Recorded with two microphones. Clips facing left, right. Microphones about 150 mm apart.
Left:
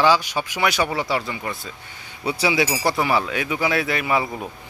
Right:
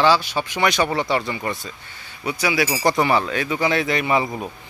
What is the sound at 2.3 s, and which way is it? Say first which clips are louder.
Speech: left 1 dB; 30° left (ahead or behind).